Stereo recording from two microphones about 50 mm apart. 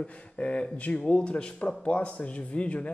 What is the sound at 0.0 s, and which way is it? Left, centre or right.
Speech, left.